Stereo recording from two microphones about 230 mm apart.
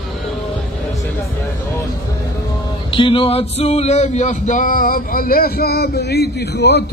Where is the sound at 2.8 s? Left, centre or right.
Left.